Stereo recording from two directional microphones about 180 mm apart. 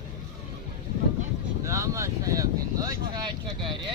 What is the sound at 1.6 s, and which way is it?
Speech, 15° right (ahead or behind).